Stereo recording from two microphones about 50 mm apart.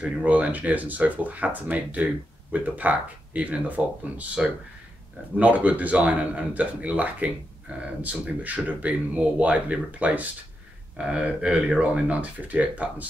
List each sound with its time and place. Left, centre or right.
0.0 s speech: right
5.4 s speech: right